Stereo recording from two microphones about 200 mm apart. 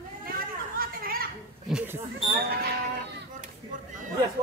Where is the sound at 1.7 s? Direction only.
5° right (ahead or behind).